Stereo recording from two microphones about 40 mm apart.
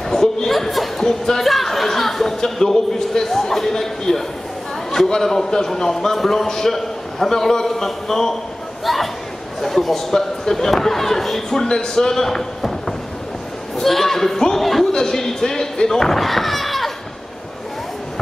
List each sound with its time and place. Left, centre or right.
0.1 s a sound: centre
1.0 s a man's voice: centre
14.9 s a man's voice: centre